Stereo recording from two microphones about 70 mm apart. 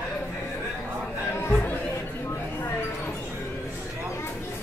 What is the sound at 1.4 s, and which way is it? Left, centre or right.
Chatter, left.